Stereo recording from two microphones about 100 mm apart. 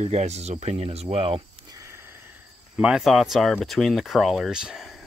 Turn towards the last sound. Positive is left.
turn(degrees=0)  # may be behind; listen again after turning